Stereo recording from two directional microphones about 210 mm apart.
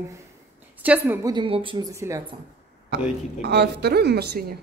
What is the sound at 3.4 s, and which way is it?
A woman's voice, 50° right (ahead or behind).